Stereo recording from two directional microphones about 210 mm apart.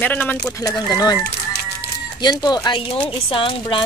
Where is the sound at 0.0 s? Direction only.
10° left (ahead or behind).